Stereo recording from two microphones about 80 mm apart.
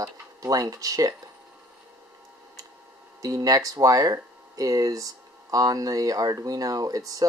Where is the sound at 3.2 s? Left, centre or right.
Right.